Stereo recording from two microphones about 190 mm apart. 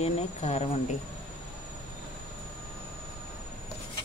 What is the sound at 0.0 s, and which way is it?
Speech, 35° left (ahead or behind).